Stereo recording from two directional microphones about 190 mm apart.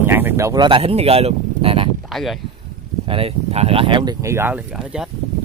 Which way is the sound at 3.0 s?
30° right (ahead or behind).